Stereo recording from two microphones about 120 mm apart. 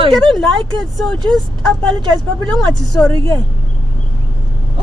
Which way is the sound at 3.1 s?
45° right (ahead or behind).